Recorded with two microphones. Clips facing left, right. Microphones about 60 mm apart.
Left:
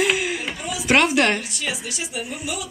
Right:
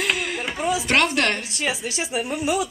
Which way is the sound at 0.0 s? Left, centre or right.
Centre.